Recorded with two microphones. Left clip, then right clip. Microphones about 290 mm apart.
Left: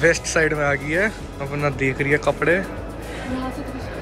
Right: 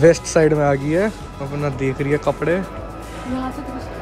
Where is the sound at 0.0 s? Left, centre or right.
Centre.